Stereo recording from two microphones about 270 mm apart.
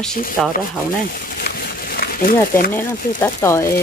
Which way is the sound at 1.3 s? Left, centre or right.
Left.